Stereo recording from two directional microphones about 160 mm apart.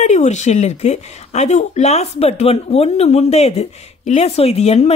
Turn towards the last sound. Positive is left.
turn(degrees=40)  # may be behind; listen again after turning